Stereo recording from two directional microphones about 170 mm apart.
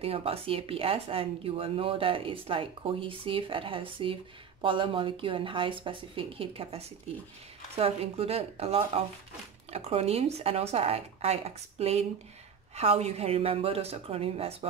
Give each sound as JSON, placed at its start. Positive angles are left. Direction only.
{"t": 0.0, "sound": "speech", "side_deg": -35}